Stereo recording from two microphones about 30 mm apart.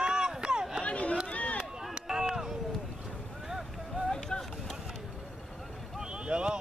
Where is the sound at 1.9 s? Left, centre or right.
Right.